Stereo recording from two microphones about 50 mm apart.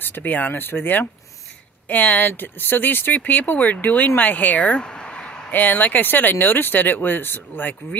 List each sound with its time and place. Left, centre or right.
0.0 s speech: left; by 5.4 s centre
5.5 s speech: left